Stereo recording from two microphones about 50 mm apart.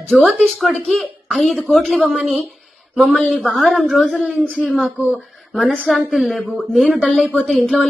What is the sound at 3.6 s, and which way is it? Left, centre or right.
A woman's voice, centre.